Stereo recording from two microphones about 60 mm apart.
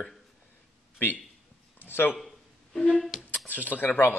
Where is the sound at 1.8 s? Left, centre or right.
Left.